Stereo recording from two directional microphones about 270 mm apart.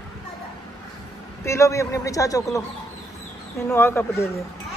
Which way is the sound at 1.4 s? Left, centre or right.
Centre.